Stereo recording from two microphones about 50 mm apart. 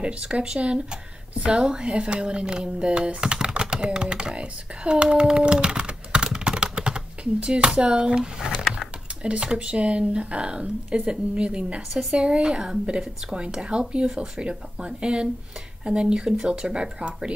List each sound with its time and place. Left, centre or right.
0.0 s speech: centre
5.2 s computer keyboard: centre
8.7 s speech: centre